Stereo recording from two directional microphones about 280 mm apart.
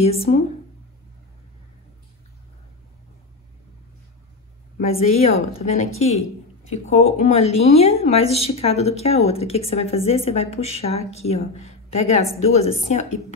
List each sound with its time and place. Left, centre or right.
0.0 s speech: left
4.7 s speech: left